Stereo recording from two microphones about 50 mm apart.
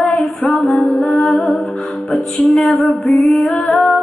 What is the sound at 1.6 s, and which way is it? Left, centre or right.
Music, centre.